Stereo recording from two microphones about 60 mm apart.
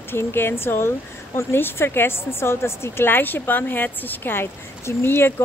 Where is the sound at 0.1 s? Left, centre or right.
Left.